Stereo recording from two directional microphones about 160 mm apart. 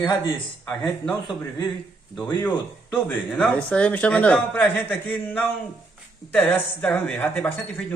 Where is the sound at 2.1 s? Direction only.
10° left (ahead or behind).